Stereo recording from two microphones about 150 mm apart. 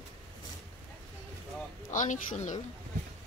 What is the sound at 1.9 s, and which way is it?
Speech, 60° left (ahead or behind).